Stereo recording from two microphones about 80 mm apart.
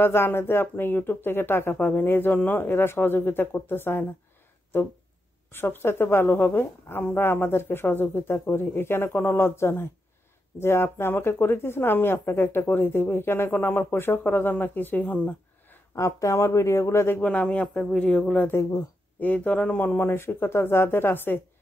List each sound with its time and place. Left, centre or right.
0.0 s a woman's voice: left
5.5 s a woman's voice: left
15.9 s speech: left
17.2 s a woman's voice: centre